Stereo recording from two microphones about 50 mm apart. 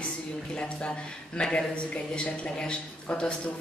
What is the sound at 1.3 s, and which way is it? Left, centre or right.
Speech, centre.